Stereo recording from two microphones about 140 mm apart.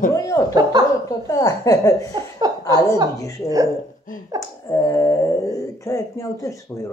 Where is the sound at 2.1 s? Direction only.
30° right (ahead or behind).